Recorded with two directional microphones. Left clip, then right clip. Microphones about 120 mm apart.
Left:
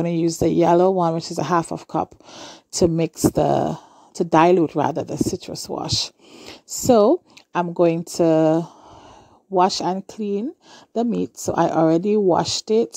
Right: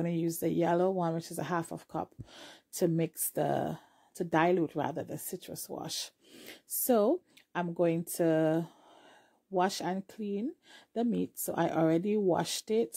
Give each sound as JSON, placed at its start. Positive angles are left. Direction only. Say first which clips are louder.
{"t": 0.0, "sound": "speech", "louder": "left 13 dB", "side_deg": 50}